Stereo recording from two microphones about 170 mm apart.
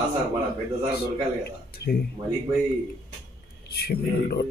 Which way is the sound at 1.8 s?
80° left.